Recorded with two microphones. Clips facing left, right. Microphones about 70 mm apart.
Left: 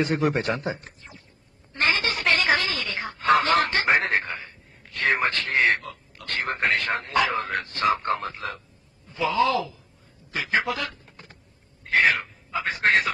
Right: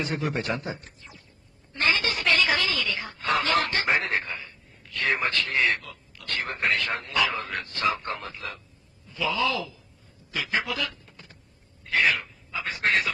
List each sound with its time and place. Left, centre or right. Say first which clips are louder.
0.0 s a man's voice: left 6 dB; left
1.7 s snicker: left 1 dB; left
9.1 s a man's voice: left 4 dB; left
11.8 s a sound: left 3 dB; left